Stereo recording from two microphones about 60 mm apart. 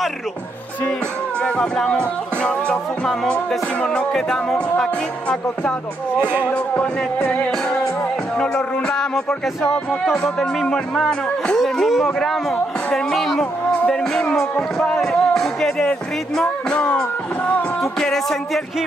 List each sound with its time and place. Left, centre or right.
1.4 s music: centre
3.8 s music: centre
11.6 s speech: centre
15.0 s music: centre